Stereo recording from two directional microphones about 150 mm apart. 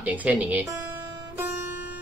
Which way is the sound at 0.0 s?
10° right (ahead or behind).